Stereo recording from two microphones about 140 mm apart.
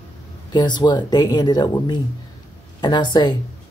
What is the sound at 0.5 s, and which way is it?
Speech, 30° left (ahead or behind).